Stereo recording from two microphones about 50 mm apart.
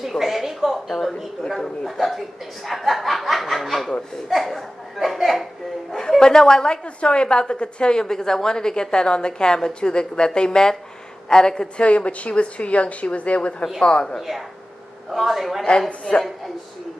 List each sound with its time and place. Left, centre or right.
0.0 s a woman's voice: centre
5.9 s a woman's voice: centre
11.8 s a woman's voice: left
15.0 s speech: centre